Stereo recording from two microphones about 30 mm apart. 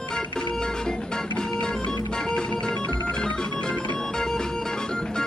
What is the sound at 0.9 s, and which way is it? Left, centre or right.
Music, left.